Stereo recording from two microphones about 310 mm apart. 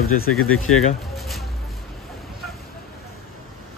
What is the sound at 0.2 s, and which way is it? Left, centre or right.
Speech, left.